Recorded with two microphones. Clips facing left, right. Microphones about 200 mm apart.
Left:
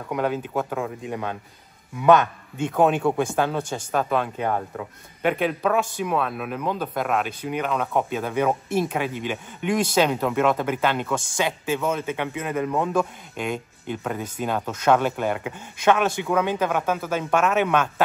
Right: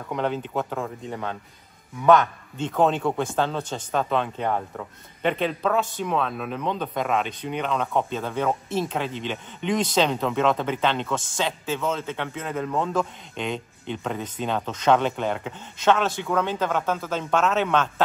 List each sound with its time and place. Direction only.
0.1 s speech: 5° left (ahead or behind)